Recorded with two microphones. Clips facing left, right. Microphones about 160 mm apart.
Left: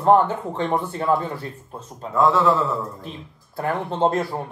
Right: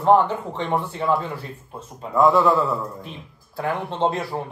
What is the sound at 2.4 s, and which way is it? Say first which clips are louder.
Speech: even; centre (ahead or behind).